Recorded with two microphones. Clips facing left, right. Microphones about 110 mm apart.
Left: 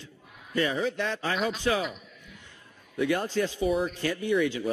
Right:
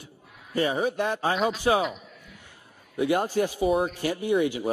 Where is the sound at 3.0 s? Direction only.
15° right (ahead or behind).